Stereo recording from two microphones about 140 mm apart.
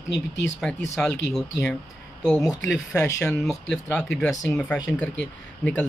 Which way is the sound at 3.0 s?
20° left (ahead or behind).